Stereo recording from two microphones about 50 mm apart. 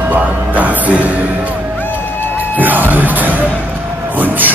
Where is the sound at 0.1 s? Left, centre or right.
Right.